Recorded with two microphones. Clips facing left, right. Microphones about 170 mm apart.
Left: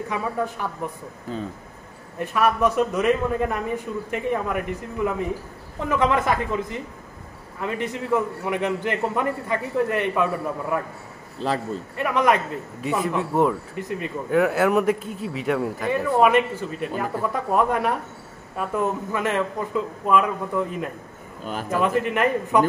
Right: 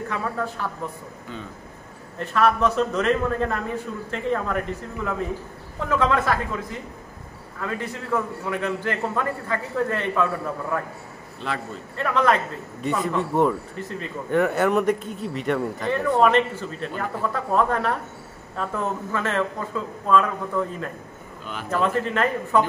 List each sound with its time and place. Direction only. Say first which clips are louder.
0.1 s speech: left 3 dB; 15° left (ahead or behind)
2.1 s speech: right 1 dB; 10° left (ahead or behind)
7.6 s speech: left 3 dB; 20° left (ahead or behind)
11.3 s a man's voice: left 5 dB; 35° left (ahead or behind)
12.0 s speech: even; 15° left (ahead or behind)
13.7 s speech: left 3 dB; 15° left (ahead or behind)
14.3 s speech: left 1 dB; 5° left (ahead or behind)